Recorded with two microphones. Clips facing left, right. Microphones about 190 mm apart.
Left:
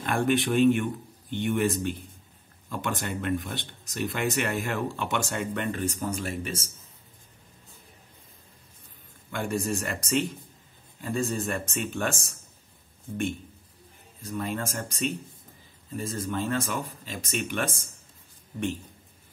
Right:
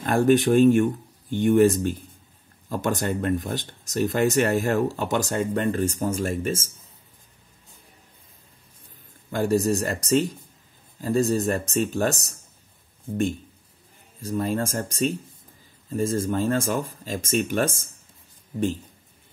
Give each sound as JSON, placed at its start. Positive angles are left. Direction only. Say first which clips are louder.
{"t": 0.0, "sound": "speech", "louder": "right 6 dB", "side_deg": -40}
{"t": 9.3, "sound": "speech", "louder": "right 7 dB", "side_deg": -35}
{"t": 14.2, "sound": "speech", "louder": "right 6 dB", "side_deg": -40}